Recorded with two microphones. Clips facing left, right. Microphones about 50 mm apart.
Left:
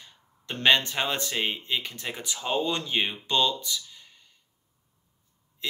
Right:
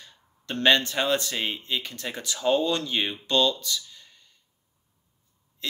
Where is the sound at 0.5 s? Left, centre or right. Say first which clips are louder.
Right 1 dB; centre.